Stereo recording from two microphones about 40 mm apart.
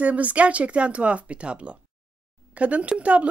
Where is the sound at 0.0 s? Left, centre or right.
Right.